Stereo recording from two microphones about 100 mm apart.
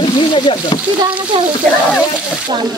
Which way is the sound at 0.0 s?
55° left (ahead or behind).